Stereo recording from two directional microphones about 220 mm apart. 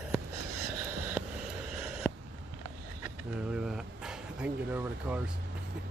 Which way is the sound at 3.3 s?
5° right (ahead or behind).